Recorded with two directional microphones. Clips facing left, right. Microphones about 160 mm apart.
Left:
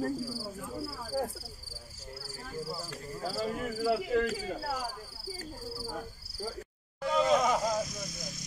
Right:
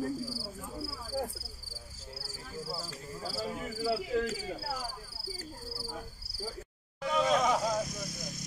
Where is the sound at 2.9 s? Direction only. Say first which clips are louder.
Left 3 dB; 55° left (ahead or behind).